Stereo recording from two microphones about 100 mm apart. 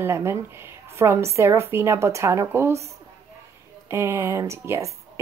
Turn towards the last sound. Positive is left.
turn(degrees=-30)  # may be behind; listen again after turning